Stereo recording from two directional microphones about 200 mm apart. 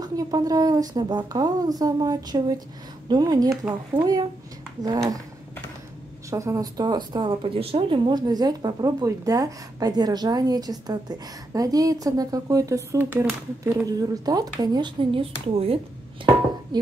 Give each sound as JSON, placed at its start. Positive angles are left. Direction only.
{"t": 0.0, "sound": "speech", "side_deg": -20}
{"t": 6.3, "sound": "speech", "side_deg": -15}